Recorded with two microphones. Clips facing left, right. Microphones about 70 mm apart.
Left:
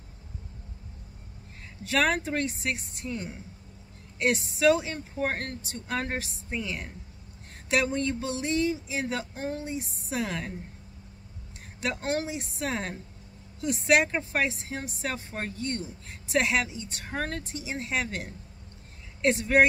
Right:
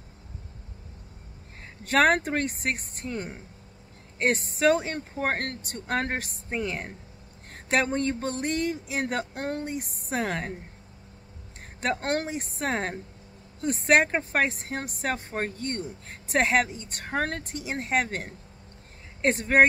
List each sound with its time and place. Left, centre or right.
1.9 s speech: right
6.5 s speech: right
11.8 s speech: right